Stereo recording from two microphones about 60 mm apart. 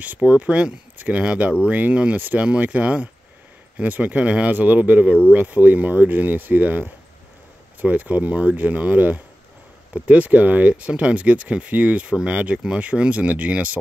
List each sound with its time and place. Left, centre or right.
0.0 s speech: right
0.9 s speech: right
1.2 s speech: centre